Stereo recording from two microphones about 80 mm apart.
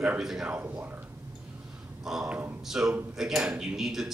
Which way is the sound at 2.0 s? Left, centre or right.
Centre.